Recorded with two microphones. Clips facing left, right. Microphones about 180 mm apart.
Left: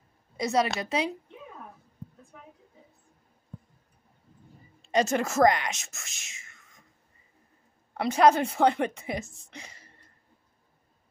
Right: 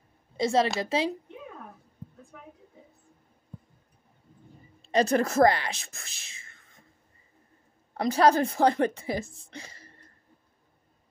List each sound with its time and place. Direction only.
0.4 s a woman's voice: 25° right (ahead or behind)
4.8 s speech: 35° right (ahead or behind)
8.0 s speech: 35° right (ahead or behind)